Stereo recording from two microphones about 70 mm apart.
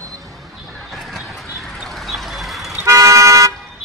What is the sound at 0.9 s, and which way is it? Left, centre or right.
Vehicle, centre.